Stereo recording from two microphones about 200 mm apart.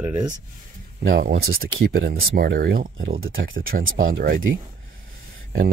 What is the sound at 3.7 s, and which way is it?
Speech, 45° right (ahead or behind).